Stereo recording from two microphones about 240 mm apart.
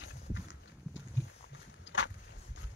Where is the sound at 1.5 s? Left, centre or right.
Left.